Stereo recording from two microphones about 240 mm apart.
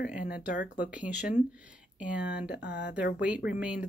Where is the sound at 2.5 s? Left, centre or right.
Left.